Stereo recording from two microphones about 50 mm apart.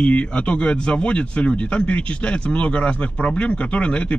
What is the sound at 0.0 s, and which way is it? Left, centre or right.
Speech, left.